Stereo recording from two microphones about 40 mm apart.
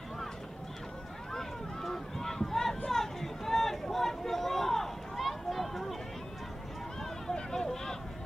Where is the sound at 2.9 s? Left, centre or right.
Centre.